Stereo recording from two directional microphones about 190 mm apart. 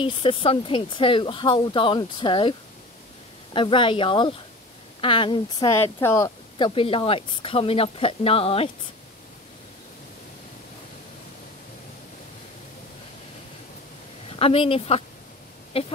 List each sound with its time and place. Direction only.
0.0 s speech: 25° left (ahead or behind)
3.5 s speech: 25° left (ahead or behind)
5.8 s speech: 15° left (ahead or behind); by 8.6 s 30° left (ahead or behind)
14.3 s speech: 30° left (ahead or behind)